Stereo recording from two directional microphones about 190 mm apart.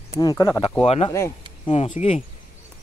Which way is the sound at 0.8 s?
35° left (ahead or behind).